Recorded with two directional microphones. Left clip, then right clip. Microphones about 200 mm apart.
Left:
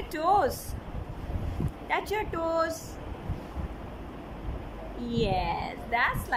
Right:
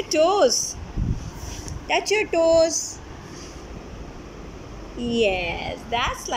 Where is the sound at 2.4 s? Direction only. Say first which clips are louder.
Right 11 dB; 10° left (ahead or behind).